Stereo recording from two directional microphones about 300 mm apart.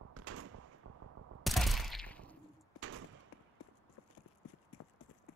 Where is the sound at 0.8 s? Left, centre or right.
Right.